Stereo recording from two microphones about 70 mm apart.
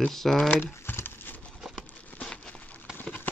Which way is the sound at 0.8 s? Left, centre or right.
Left.